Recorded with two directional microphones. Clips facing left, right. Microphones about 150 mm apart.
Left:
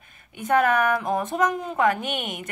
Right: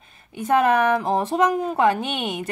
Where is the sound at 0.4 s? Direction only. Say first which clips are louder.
Right 2 dB; 30° right (ahead or behind).